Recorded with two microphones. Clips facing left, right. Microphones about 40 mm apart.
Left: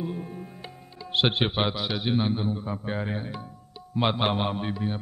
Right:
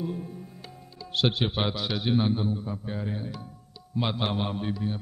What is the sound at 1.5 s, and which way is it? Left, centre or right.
A man's voice, centre.